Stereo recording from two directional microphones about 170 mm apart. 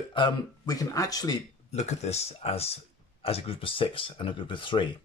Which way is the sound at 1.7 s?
40° left (ahead or behind).